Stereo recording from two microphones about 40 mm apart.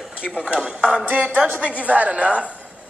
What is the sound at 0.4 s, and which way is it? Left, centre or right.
Speech, right.